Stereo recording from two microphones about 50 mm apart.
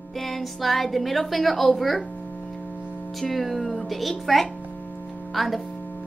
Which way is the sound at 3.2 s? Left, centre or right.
Centre.